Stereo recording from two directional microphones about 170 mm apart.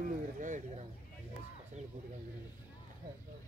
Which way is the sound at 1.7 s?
45° right (ahead or behind).